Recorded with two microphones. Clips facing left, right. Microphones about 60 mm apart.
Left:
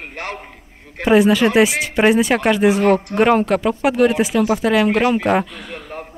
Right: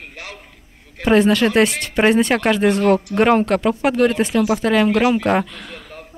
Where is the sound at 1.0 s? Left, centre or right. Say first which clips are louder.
Left 1 dB; centre.